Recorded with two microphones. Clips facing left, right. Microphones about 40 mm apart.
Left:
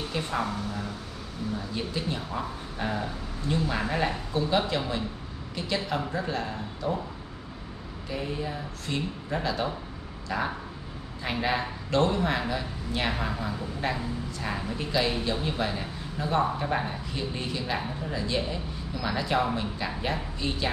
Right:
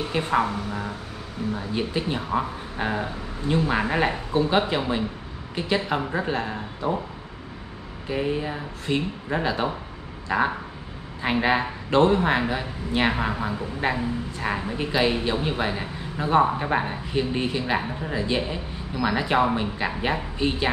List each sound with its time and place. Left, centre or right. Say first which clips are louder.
0.0 s a man's voice: right 7 dB; right
8.1 s a man's voice: right 6 dB; right